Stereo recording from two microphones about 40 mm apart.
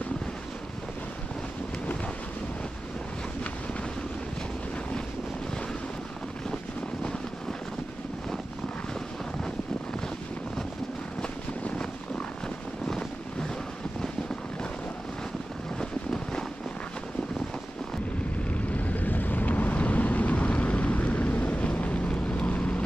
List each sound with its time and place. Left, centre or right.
6.5 s vehicle: left
12.8 s vehicle: left
15.8 s vehicle: centre
18.5 s vehicle: left